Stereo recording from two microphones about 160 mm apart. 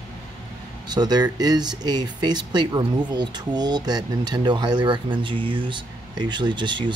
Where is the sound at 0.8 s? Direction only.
25° right (ahead or behind).